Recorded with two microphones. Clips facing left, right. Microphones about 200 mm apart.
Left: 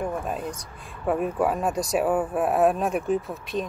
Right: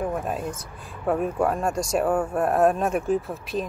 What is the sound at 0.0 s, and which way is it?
Speech, 5° right (ahead or behind).